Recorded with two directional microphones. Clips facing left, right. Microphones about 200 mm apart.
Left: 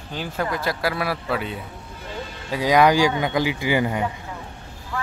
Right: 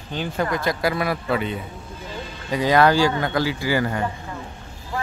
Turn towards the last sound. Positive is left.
turn(degrees=15)  # may be behind; listen again after turning